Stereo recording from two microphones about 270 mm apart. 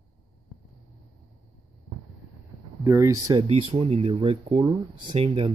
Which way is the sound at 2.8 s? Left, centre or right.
Centre.